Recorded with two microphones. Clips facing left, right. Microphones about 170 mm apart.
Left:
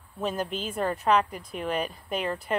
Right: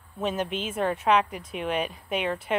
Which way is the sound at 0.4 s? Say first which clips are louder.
Right 2 dB; 35° left (ahead or behind).